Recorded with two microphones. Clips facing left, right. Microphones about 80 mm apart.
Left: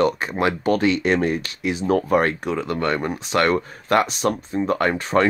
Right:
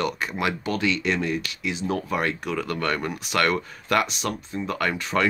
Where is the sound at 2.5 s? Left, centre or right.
Left.